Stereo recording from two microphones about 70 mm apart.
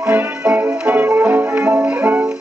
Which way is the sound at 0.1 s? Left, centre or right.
Right.